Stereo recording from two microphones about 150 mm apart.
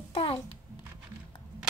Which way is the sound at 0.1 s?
35° left (ahead or behind).